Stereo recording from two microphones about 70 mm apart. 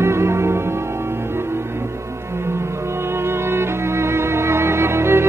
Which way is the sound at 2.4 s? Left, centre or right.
Right.